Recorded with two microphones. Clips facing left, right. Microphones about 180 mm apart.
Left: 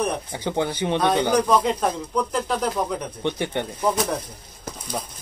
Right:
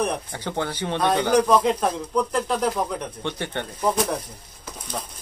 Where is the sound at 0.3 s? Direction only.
15° left (ahead or behind).